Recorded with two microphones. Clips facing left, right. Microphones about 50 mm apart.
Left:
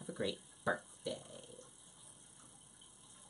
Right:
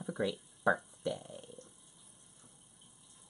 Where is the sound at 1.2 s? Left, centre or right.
Right.